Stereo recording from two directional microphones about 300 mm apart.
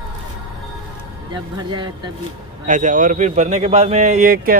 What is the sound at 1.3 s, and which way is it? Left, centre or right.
Speech, centre.